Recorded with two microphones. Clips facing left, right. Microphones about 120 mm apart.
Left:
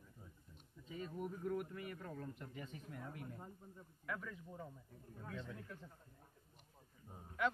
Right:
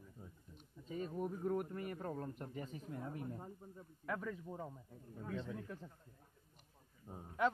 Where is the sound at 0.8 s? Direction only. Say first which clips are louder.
Right 4 dB; 40° right (ahead or behind).